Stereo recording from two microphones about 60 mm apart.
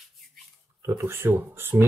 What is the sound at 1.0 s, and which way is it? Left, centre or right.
Speech, right.